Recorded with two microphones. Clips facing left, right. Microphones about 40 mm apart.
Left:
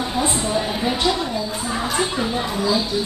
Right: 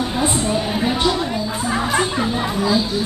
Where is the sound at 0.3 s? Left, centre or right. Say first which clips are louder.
Right 2 dB; centre.